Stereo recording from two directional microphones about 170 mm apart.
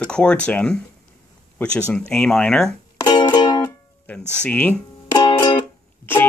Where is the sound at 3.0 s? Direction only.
25° left (ahead or behind).